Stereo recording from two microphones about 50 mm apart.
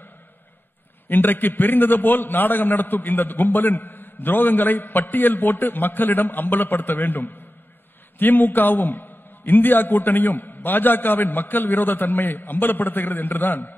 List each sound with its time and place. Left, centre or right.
1.0 s a man's voice: left